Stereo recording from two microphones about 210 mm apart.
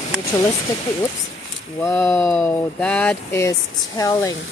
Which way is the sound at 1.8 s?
10° left (ahead or behind).